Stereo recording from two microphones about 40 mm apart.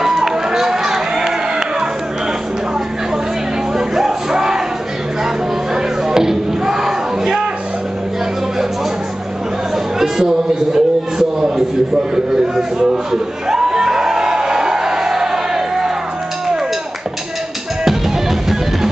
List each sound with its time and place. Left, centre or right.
0.0 s run: centre
3.7 s music: centre
5.8 s crowd: centre
9.9 s music: centre
12.5 s a sound: centre